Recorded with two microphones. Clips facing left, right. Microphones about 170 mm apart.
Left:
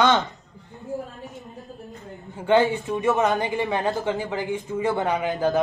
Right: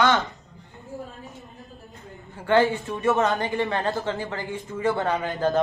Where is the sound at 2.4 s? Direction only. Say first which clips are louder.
Left 1 dB; 20° left (ahead or behind).